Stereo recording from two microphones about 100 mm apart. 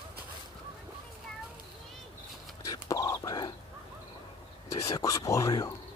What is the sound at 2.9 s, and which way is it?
Whispering, 35° left (ahead or behind).